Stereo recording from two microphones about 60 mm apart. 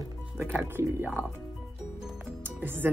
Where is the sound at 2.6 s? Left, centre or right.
Right.